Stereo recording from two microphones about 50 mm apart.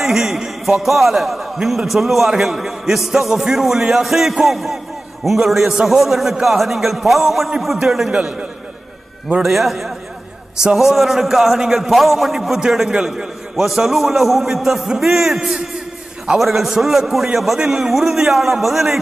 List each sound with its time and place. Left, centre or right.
0.0 s a man's voice: centre
8.1 s a man's voice: centre
9.4 s a man's voice: centre